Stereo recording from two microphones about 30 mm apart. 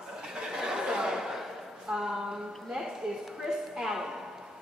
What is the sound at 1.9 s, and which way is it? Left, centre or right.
Speech, centre.